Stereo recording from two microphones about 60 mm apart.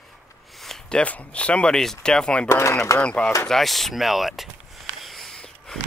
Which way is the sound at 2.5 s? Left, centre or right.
Left.